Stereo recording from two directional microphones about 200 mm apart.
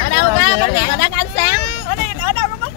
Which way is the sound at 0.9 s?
55° left (ahead or behind).